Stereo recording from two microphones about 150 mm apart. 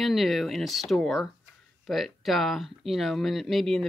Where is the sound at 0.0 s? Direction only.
Centre (ahead or behind).